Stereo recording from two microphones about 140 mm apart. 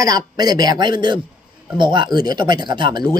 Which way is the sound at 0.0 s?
25° right (ahead or behind).